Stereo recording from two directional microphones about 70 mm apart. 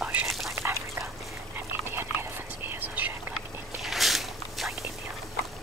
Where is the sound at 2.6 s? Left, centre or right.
Right.